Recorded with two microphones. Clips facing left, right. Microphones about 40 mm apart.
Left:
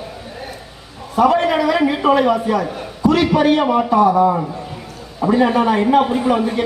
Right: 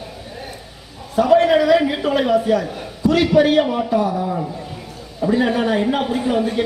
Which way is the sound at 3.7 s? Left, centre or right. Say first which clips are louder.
Left 5 dB; left.